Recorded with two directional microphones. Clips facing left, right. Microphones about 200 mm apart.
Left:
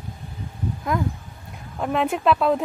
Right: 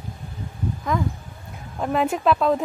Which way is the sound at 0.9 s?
5° left (ahead or behind).